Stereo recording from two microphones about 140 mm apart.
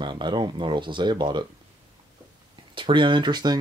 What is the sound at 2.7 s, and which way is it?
Speech, 35° right (ahead or behind).